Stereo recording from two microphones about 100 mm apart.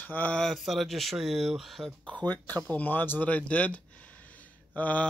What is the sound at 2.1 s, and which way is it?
Speech, 15° left (ahead or behind).